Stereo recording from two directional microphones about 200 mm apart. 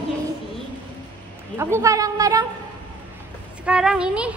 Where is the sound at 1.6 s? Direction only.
15° right (ahead or behind).